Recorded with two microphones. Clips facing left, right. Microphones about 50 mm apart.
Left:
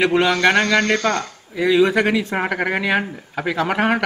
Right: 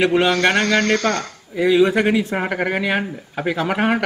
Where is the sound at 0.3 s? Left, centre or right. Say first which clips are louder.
Left 1 dB; centre.